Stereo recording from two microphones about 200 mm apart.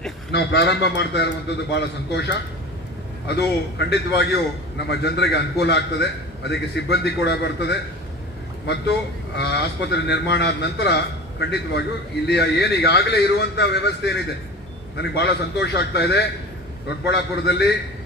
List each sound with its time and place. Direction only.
0.3 s a man's voice: 55° left (ahead or behind)
9.4 s a man's voice: 55° left (ahead or behind)